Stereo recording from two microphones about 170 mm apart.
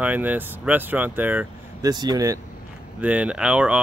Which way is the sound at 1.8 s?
25° right (ahead or behind).